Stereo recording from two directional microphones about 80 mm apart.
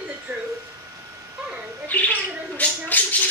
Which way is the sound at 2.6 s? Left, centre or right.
Left.